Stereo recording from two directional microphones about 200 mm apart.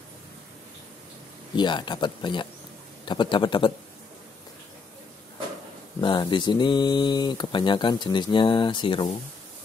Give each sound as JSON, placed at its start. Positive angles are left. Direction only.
{"t": 1.6, "sound": "speech", "side_deg": 20}
{"t": 5.9, "sound": "speech", "side_deg": 25}